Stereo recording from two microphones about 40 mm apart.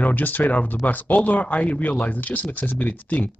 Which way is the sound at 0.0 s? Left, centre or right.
Left.